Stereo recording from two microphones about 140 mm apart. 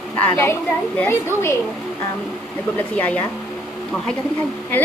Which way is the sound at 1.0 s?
20° left (ahead or behind).